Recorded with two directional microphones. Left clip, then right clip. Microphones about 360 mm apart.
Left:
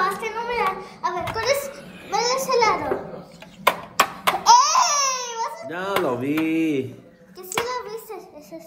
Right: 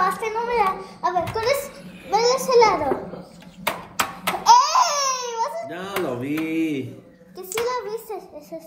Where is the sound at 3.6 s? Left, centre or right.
Left.